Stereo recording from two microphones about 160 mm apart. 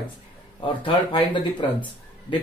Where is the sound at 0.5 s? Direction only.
30° left (ahead or behind).